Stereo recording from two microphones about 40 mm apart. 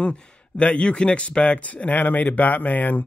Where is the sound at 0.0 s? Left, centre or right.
Left.